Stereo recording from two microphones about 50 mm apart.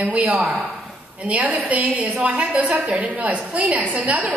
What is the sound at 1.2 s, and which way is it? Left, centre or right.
A woman's voice, right.